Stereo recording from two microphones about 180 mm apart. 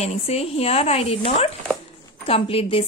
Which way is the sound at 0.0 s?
35° left (ahead or behind).